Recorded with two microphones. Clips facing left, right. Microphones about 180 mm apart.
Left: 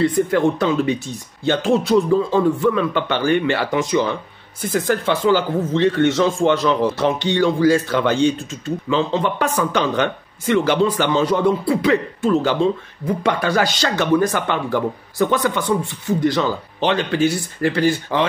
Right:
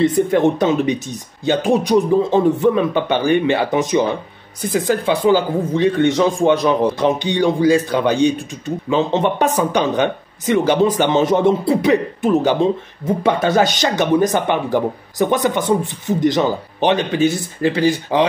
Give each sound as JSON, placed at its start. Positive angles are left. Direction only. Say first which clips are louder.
{"t": 0.0, "sound": "speech", "louder": "right 2 dB", "side_deg": -20}